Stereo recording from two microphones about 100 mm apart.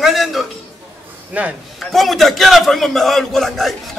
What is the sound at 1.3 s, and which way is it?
Speech, 15° right (ahead or behind).